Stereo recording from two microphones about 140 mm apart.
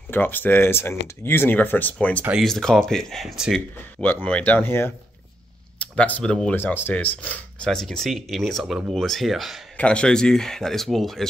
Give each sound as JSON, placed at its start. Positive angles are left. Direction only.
{"t": 0.1, "sound": "speech", "side_deg": 15}
{"t": 4.0, "sound": "speech", "side_deg": 15}